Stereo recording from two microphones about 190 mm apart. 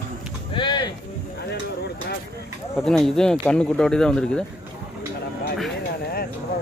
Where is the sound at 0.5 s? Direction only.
25° left (ahead or behind).